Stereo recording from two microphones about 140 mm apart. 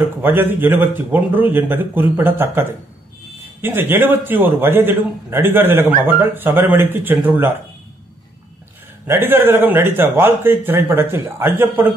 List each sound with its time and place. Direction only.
0.2 s a man's voice: 15° right (ahead or behind)
3.6 s a man's voice: 15° right (ahead or behind)
9.0 s a man's voice: 15° right (ahead or behind)